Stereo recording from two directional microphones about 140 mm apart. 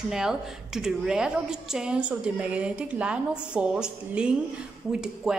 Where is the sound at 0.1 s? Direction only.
5° right (ahead or behind).